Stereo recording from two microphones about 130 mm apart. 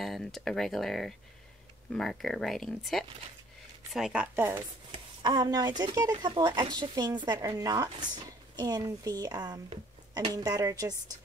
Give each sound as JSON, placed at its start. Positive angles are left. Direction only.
{"t": 0.0, "sound": "speech", "side_deg": 0}
{"t": 4.9, "sound": "a woman's voice", "side_deg": -35}